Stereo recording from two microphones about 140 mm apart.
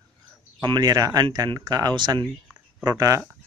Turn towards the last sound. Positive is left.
turn(degrees=-30)  # may be behind; listen again after turning